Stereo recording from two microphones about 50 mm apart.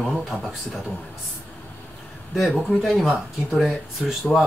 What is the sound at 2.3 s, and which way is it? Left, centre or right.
Speech, centre.